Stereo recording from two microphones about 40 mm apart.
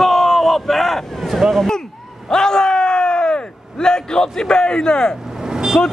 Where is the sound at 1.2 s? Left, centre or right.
Centre.